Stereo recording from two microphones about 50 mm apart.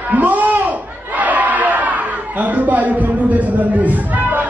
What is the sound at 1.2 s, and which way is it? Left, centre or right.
Crowd, right.